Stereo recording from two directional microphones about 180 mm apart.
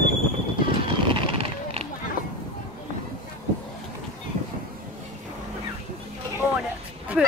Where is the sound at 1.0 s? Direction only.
30° right (ahead or behind).